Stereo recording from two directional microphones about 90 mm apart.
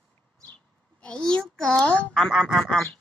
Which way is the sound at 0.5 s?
10° left (ahead or behind).